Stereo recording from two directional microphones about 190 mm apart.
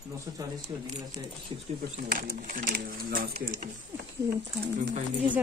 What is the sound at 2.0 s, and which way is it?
Speech, 45° right (ahead or behind).